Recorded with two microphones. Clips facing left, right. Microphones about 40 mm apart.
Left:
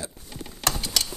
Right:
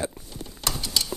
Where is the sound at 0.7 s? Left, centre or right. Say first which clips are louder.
Left 1 dB; left.